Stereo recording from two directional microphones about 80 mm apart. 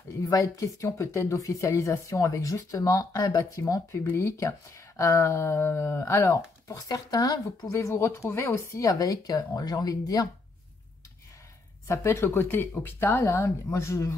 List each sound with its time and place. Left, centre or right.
0.2 s speech: left
7.9 s speech: left
11.9 s speech: left